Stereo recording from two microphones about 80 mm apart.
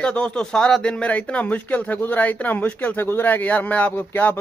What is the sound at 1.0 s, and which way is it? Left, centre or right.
Speech, centre.